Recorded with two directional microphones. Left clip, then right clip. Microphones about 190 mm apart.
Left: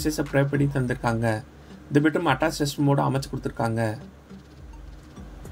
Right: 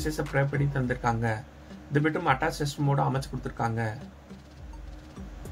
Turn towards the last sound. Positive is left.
turn(degrees=20)  # may be behind; listen again after turning